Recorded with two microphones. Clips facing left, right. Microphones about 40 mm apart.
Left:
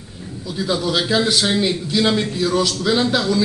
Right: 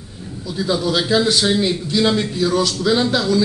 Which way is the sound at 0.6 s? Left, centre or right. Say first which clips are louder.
Right 1 dB; centre.